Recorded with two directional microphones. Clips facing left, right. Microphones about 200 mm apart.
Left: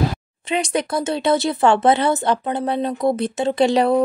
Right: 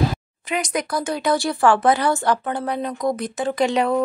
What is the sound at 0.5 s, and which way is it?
Speech, 30° left (ahead or behind).